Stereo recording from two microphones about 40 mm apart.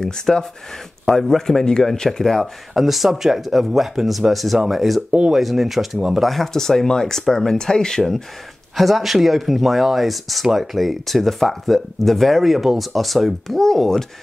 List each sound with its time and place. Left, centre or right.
0.0 s speech: centre
5.9 s speech: centre
6.2 s speech: centre
8.7 s speech: centre